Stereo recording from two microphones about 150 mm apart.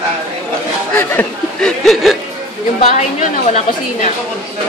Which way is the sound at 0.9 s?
15° left (ahead or behind).